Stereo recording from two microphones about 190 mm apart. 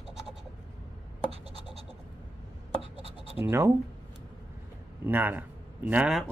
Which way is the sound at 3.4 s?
15° right (ahead or behind).